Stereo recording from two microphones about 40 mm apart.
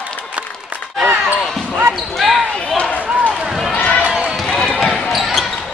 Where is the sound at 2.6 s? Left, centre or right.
Left.